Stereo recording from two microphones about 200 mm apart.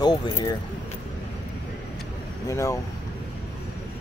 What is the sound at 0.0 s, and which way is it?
Speech, 20° left (ahead or behind).